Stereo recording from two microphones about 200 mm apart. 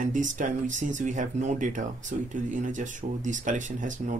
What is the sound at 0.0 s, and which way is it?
Speech, 40° right (ahead or behind).